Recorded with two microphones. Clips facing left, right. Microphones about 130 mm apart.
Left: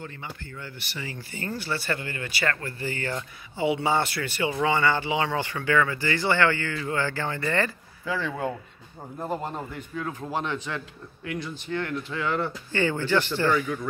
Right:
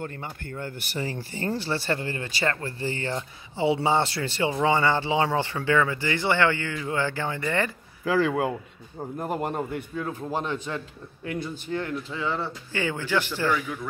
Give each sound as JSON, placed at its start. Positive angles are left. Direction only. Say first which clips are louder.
{"t": 0.0, "sound": "speech", "louder": "right 4 dB", "side_deg": -50}
{"t": 8.0, "sound": "speech", "louder": "right 6 dB", "side_deg": -65}
{"t": 9.2, "sound": "speech", "louder": "right 2 dB", "side_deg": -15}
{"t": 9.9, "sound": "speech", "louder": "left 1 dB", "side_deg": -40}
{"t": 12.1, "sound": "speech", "louder": "left 2 dB", "side_deg": -5}